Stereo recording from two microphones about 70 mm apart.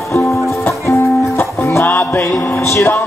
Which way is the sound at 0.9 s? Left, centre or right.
Left.